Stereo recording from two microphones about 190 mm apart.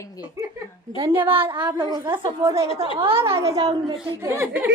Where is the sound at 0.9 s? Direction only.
20° right (ahead or behind).